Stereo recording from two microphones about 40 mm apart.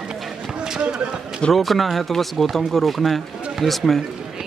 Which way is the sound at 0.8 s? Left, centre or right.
Right.